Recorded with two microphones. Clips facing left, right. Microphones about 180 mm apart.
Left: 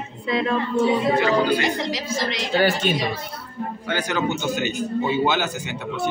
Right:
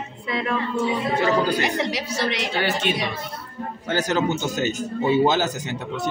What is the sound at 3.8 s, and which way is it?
A man's voice, 40° right (ahead or behind).